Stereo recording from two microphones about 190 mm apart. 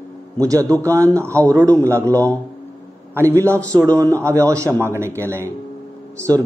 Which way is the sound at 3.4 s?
15° right (ahead or behind).